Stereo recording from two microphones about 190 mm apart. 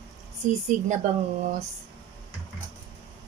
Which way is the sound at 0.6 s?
40° right (ahead or behind).